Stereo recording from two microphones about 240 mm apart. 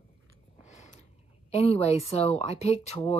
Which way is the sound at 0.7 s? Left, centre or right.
Left.